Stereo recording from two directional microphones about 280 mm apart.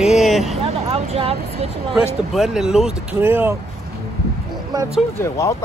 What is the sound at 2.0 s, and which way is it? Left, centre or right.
Speech, centre.